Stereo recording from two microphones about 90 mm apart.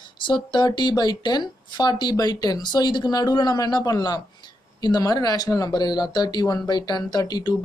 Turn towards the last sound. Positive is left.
turn(degrees=50)  # may be behind; listen again after turning